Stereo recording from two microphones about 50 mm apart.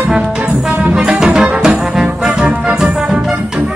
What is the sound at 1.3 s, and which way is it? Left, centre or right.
Music, centre.